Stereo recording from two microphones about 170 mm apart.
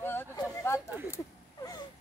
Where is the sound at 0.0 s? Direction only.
15° left (ahead or behind).